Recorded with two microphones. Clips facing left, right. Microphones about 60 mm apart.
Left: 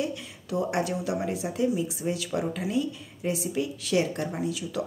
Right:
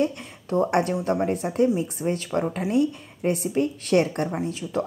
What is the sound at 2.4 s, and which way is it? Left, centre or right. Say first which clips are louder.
Speech: right 4 dB; right.